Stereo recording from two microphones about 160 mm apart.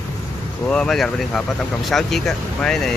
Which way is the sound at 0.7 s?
5° left (ahead or behind).